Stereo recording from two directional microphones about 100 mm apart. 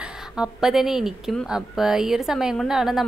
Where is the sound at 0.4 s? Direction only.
5° right (ahead or behind).